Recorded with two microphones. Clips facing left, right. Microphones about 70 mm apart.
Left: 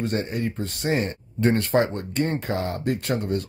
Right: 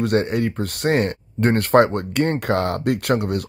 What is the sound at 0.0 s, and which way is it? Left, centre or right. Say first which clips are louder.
Speech: right 6 dB; right.